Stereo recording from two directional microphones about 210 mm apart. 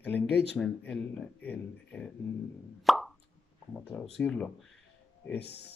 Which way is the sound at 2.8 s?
Centre (ahead or behind).